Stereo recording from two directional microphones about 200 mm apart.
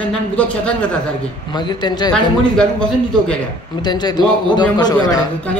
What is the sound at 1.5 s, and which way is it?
Speech, 20° left (ahead or behind).